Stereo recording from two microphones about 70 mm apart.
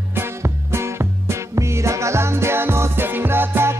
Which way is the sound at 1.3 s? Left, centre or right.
Right.